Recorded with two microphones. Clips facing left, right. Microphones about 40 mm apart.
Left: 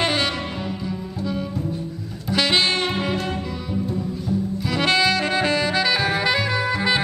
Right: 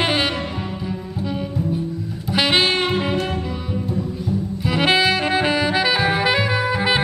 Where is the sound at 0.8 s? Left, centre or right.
Centre.